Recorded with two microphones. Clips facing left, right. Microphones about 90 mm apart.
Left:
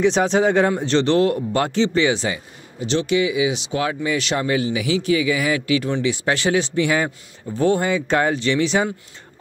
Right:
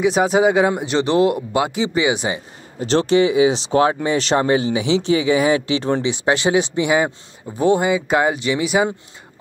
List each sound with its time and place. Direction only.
0.0 s speech: 10° right (ahead or behind)
2.8 s speech: 40° right (ahead or behind); by 8.8 s 10° right (ahead or behind)